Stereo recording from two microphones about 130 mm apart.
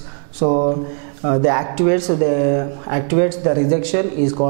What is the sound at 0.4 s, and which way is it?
Speech, 10° right (ahead or behind).